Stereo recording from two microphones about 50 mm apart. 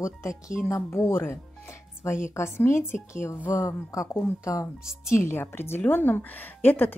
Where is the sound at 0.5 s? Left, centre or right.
Centre.